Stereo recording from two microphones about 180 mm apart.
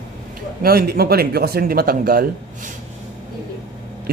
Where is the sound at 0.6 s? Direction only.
60° right (ahead or behind).